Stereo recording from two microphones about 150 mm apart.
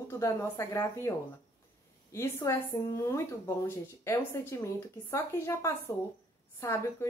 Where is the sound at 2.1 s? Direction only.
15° left (ahead or behind).